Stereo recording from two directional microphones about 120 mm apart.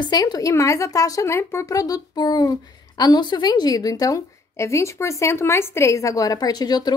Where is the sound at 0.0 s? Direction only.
35° left (ahead or behind).